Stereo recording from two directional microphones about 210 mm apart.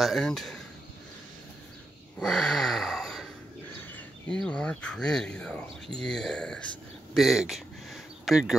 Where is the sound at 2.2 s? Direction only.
Centre (ahead or behind).